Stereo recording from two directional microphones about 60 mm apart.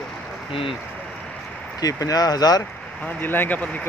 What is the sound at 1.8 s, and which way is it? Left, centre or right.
Speech, left.